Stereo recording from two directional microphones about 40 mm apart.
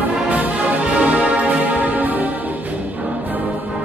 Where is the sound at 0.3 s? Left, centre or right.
Right.